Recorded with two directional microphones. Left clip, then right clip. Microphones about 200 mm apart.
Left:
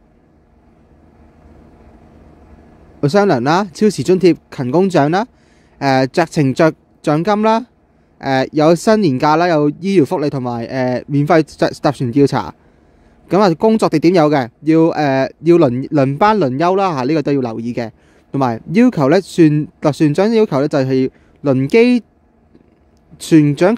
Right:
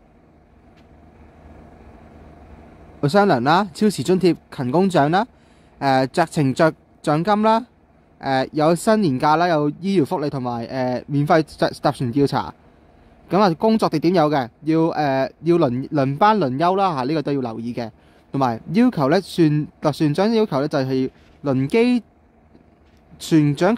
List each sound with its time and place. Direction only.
3.0 s a man's voice: 20° left (ahead or behind)
23.1 s a man's voice: 25° left (ahead or behind)